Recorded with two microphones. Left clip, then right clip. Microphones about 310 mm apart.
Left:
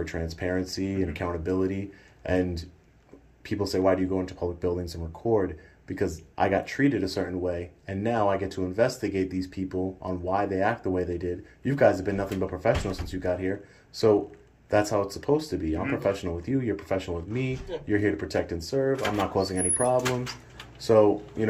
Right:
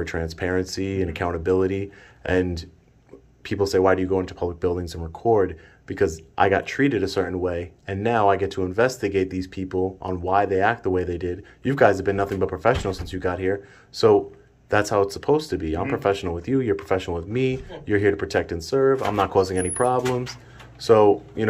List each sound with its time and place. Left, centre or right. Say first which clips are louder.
0.0 s speech: right 5 dB; centre